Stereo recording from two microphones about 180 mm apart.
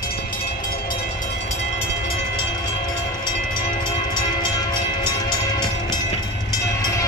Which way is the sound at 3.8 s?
25° left (ahead or behind).